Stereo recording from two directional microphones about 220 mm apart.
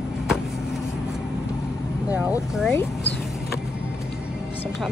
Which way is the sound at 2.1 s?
5° right (ahead or behind).